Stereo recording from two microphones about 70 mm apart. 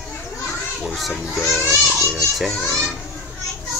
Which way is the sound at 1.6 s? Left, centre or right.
Left.